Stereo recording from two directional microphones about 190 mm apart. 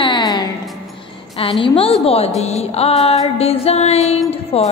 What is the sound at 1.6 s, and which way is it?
Speech, 30° left (ahead or behind).